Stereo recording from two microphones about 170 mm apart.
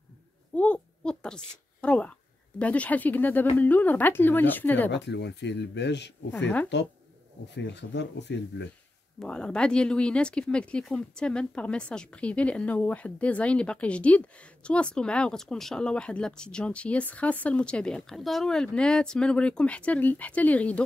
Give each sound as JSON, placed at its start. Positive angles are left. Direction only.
{"t": 0.6, "sound": "a woman's voice", "side_deg": 5}
{"t": 4.9, "sound": "speech", "side_deg": 90}
{"t": 9.2, "sound": "speech", "side_deg": 5}